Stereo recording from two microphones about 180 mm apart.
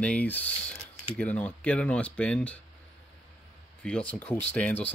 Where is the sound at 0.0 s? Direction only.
10° left (ahead or behind).